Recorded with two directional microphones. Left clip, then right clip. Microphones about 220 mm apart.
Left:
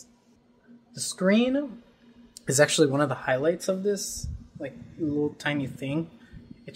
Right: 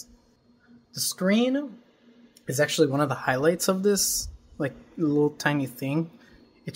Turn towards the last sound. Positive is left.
turn(degrees=-15)  # may be behind; listen again after turning